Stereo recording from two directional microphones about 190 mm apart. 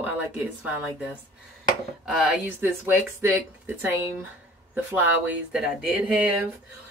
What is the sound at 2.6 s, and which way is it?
Speech, 10° right (ahead or behind).